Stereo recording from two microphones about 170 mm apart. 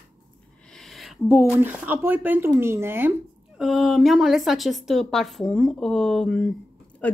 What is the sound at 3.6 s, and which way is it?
A woman's voice, centre (ahead or behind).